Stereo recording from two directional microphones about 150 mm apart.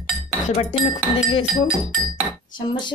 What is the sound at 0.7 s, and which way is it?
Speech, 35° left (ahead or behind).